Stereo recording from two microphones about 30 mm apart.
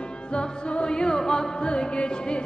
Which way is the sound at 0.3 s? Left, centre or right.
Left.